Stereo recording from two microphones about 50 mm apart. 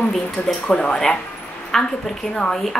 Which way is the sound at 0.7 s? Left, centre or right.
Left.